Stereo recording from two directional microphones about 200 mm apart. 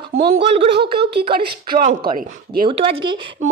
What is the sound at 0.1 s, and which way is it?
Speech, 90° right.